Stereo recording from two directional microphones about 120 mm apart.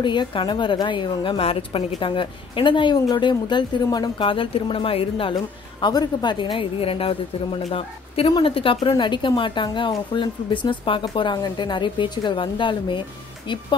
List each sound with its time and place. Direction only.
0.0 s speech: 40° left (ahead or behind)
1.4 s a woman's voice: 55° left (ahead or behind)